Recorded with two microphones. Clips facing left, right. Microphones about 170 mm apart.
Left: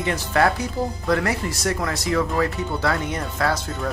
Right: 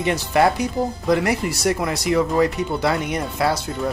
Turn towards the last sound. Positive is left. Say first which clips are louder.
# right 2 dB
turn(degrees=-10)  # may be behind; listen again after turning